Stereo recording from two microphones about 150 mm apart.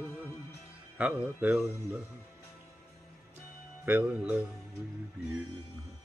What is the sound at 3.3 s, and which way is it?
Music, 10° right (ahead or behind).